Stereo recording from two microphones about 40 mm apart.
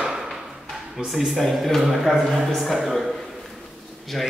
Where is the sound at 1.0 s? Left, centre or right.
Centre.